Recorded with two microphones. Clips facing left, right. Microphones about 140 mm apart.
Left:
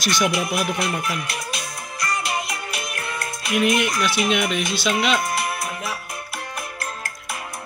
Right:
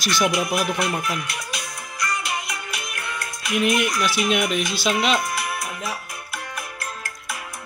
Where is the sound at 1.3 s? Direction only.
30° left (ahead or behind).